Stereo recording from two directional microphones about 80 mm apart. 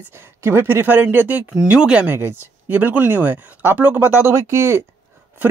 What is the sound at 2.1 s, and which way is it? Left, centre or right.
Speech, right.